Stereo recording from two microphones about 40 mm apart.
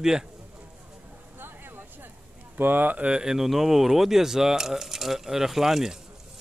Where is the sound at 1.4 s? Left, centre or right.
Right.